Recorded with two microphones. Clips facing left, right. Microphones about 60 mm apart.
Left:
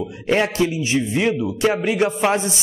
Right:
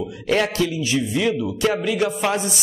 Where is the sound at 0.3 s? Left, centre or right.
Left.